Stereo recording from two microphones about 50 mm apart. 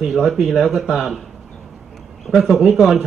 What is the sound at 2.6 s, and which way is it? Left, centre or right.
Speech, centre.